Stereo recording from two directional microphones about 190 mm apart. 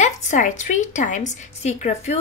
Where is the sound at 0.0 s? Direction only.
40° left (ahead or behind).